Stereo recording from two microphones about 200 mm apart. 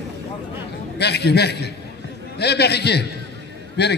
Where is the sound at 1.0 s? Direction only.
55° left (ahead or behind).